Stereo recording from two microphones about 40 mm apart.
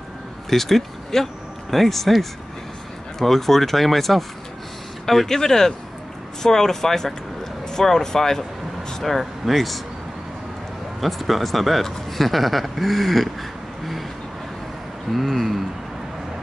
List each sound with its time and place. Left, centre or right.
0.5 s speech: centre
11.0 s speech: centre
15.0 s speech: centre